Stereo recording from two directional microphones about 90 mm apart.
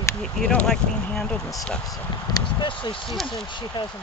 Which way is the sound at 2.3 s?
45° left (ahead or behind).